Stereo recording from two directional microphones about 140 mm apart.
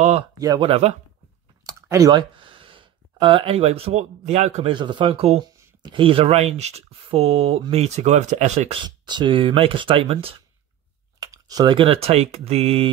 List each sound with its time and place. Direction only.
0.6 s speech: 45° right (ahead or behind)
1.7 s speech: 20° right (ahead or behind)
2.3 s speech: 40° right (ahead or behind)
4.7 s speech: 35° right (ahead or behind)
5.4 s speech: 30° right (ahead or behind); by 8.7 s 55° right (ahead or behind)
8.8 s speech: 30° right (ahead or behind)
11.1 s speech: 25° right (ahead or behind); by 12.9 s 45° right (ahead or behind)